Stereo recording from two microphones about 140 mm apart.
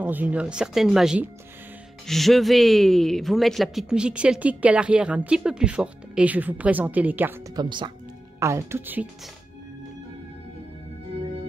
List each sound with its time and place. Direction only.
0.0 s speech: 10° right (ahead or behind)
7.5 s speech: 35° right (ahead or behind)
8.4 s speech: 20° right (ahead or behind)